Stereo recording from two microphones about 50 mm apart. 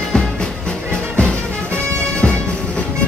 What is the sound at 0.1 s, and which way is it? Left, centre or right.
Music, centre.